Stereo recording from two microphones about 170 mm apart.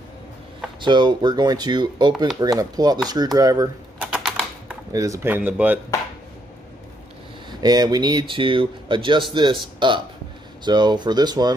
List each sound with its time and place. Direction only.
0.7 s speech: 25° right (ahead or behind)
4.0 s typing: 5° right (ahead or behind)
4.9 s speech: 20° right (ahead or behind)
7.6 s speech: 25° right (ahead or behind)